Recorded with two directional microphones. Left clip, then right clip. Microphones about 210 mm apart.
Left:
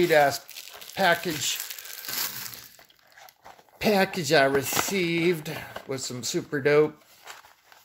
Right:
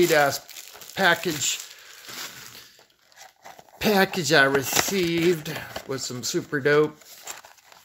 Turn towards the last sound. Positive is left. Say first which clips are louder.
# right 4 dB
turn(degrees=-10)  # may be behind; listen again after turning